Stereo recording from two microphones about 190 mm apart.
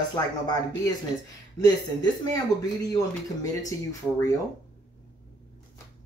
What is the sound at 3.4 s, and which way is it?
Speech, 15° left (ahead or behind).